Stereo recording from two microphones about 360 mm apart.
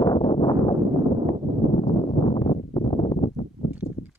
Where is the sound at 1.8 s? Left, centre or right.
Centre.